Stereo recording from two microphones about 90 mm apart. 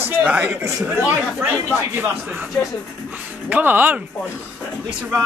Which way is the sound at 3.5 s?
20° right (ahead or behind).